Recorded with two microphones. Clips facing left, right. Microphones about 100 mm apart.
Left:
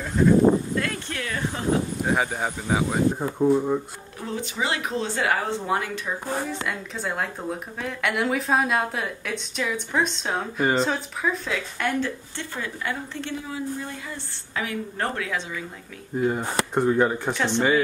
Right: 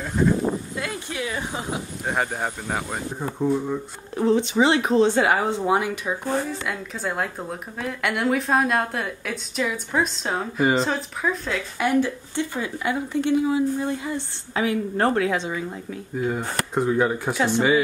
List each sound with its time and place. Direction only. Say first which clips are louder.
0.2 s a sound: left 5 dB; 5° right (ahead or behind)
2.0 s a woman's voice: right 3 dB; centre (ahead or behind)
4.2 s a woman's voice: right 10 dB; 25° right (ahead or behind)
6.5 s a woman's voice: even; centre (ahead or behind)
11.8 s a woman's voice: right 6 dB; 10° right (ahead or behind); by 15.3 s 35° right (ahead or behind)
16.2 s a woman's voice: left 2 dB; centre (ahead or behind)